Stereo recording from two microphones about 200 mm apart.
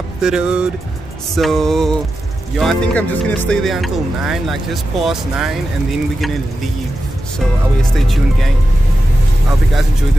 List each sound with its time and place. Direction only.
0.2 s speech: 5° right (ahead or behind)
7.9 s speech: centre (ahead or behind)